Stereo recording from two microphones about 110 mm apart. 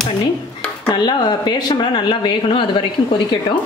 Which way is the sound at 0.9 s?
40° left (ahead or behind).